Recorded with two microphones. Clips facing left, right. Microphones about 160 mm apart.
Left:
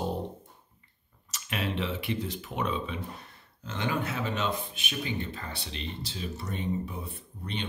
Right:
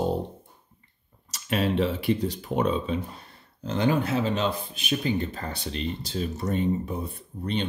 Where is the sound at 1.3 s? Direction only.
35° right (ahead or behind).